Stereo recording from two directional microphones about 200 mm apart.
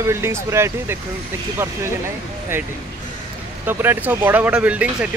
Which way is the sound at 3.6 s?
10° right (ahead or behind).